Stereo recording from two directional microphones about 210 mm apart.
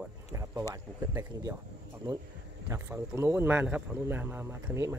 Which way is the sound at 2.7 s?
15° right (ahead or behind).